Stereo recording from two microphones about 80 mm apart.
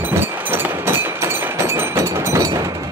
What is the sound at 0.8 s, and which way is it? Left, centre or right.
Train, right.